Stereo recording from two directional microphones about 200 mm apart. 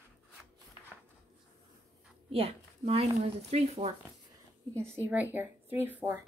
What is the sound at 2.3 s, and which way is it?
Speech, 30° right (ahead or behind).